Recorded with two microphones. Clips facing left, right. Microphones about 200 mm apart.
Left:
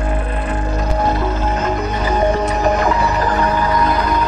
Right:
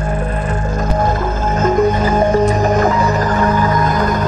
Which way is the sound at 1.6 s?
40° right (ahead or behind).